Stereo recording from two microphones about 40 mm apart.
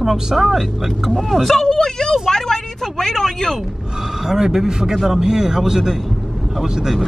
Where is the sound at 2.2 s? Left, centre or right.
Centre.